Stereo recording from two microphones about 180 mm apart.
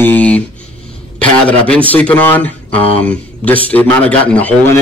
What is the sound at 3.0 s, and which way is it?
Speech, 5° left (ahead or behind).